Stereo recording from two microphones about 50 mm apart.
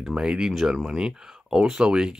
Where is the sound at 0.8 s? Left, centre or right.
Centre.